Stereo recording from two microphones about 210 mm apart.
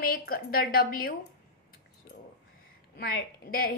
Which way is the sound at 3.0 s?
45° left (ahead or behind).